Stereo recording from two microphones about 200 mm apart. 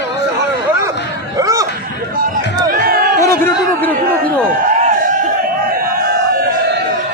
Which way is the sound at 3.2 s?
10° left (ahead or behind).